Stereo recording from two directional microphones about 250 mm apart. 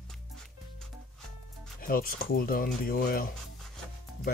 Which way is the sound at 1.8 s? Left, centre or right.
Left.